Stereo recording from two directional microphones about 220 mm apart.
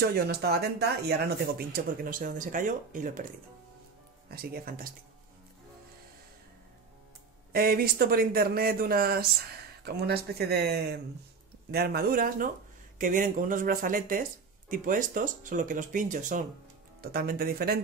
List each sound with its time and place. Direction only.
0.0 s speech: 45° right (ahead or behind)
4.3 s speech: 45° right (ahead or behind)
7.5 s speech: 45° right (ahead or behind)